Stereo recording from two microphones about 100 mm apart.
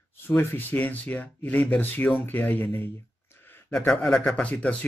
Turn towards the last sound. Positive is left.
turn(degrees=10)  # may be behind; listen again after turning